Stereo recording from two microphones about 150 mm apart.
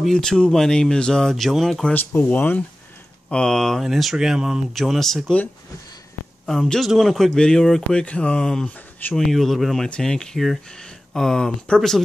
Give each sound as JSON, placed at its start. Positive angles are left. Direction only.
{"t": 0.0, "sound": "a man's voice", "side_deg": 5}
{"t": 2.0, "sound": "a man's voice", "side_deg": 10}